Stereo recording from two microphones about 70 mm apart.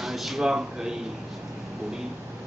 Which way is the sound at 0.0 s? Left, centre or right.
Centre.